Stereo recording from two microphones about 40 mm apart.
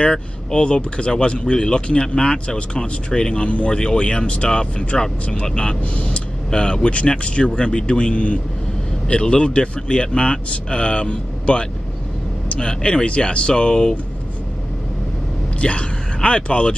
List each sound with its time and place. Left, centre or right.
0.1 s speech: left
15.6 s speech: left